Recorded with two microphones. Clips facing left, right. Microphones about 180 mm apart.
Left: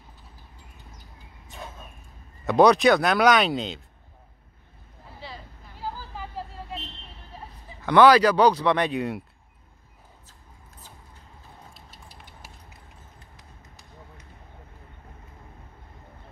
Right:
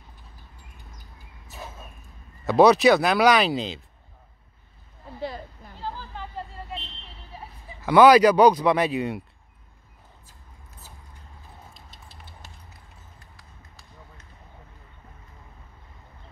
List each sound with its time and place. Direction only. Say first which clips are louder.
1.5 s a sound: even; 5° right (ahead or behind)
2.4 s speech: right 1 dB; centre (ahead or behind)
5.8 s vehicle: even; 5° left (ahead or behind)
7.3 s speech: right 1 dB; 5° right (ahead or behind)
11.7 s a sound: even; 10° left (ahead or behind)
13.4 s run: left 1 dB; 20° left (ahead or behind)